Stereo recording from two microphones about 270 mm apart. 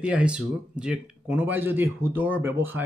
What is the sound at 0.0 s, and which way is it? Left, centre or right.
Speech, centre.